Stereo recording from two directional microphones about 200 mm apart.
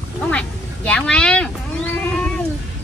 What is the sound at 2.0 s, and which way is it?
Cat, 10° left (ahead or behind).